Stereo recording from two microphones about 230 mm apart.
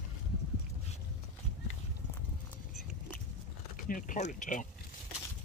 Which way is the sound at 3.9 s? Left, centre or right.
Left.